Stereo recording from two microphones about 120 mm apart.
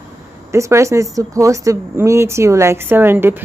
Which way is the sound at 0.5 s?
25° right (ahead or behind).